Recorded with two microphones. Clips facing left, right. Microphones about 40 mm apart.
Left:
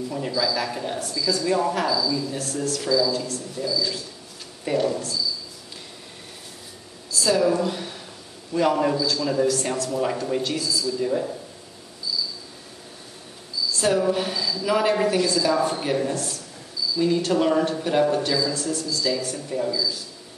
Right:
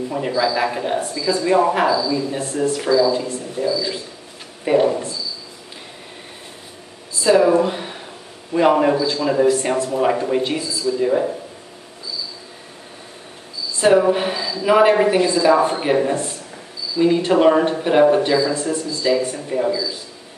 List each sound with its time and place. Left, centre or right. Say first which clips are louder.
0.3 s speech: right 6 dB; right
4.6 s a man's voice: right 7 dB; right
7.2 s a man's voice: right 7 dB; right
13.7 s a man's voice: right 7 dB; right